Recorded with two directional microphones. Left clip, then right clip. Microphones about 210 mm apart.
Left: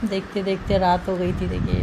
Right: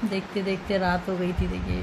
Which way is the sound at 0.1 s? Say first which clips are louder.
Left 4 dB; 10° left (ahead or behind).